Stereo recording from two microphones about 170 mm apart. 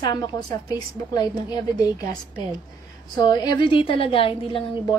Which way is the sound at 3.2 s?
25° left (ahead or behind).